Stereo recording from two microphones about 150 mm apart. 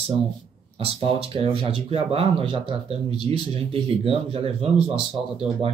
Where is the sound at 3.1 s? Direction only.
30° left (ahead or behind).